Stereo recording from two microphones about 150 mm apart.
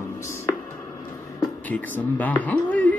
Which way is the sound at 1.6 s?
10° left (ahead or behind).